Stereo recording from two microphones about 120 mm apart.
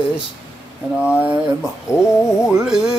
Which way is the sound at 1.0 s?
10° right (ahead or behind).